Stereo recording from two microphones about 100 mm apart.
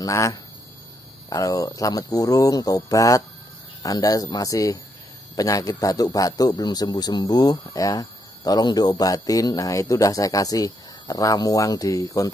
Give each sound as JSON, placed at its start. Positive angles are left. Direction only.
{"t": 0.0, "sound": "a man's voice", "side_deg": 30}